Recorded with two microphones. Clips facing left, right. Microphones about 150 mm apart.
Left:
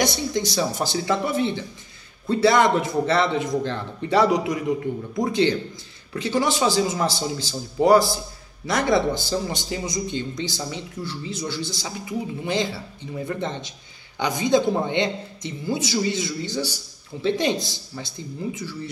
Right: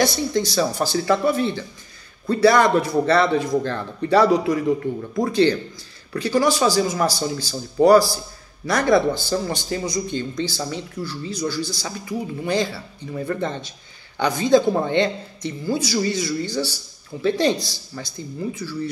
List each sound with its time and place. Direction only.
0.0 s a man's voice: 20° left (ahead or behind)